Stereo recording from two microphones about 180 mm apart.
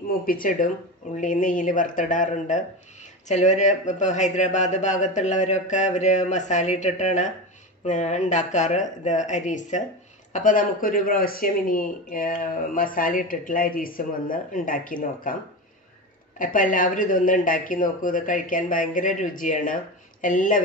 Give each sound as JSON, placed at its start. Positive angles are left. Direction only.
{"t": 0.1, "sound": "speech", "side_deg": 55}
{"t": 16.3, "sound": "speech", "side_deg": 50}